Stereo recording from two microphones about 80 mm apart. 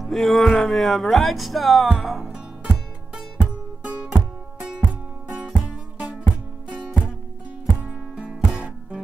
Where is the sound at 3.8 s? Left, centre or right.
Centre.